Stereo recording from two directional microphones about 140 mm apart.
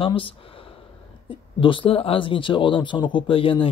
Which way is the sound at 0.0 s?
40° left (ahead or behind).